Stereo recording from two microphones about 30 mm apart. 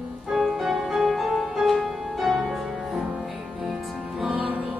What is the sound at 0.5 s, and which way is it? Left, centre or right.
Music, centre.